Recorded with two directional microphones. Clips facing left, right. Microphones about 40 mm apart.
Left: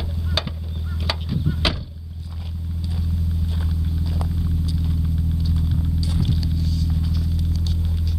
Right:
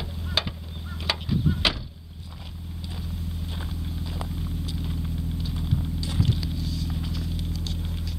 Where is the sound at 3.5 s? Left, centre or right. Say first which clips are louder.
Left 6 dB; centre.